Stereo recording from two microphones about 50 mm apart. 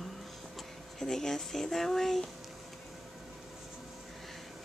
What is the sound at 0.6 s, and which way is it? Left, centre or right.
Speech, centre.